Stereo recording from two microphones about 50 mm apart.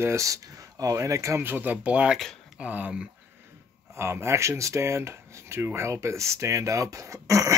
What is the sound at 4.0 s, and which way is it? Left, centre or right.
Speech, right.